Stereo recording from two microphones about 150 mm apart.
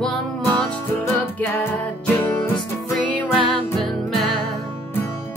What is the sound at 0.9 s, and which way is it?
Music, 15° left (ahead or behind).